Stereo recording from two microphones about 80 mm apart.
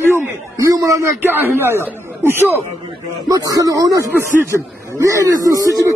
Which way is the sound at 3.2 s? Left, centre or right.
Right.